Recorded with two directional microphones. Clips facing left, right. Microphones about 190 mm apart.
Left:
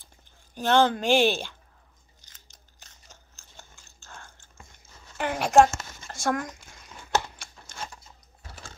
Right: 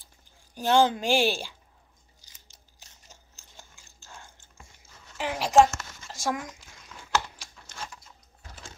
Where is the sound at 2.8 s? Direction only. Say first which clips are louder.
Left 1 dB; 15° right (ahead or behind).